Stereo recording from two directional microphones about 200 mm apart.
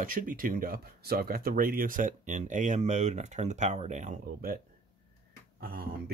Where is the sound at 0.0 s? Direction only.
45° right (ahead or behind).